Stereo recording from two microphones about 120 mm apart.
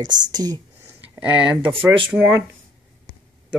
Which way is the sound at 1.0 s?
15° right (ahead or behind).